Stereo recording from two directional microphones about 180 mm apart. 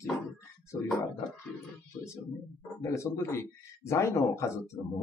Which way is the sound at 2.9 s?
15° left (ahead or behind).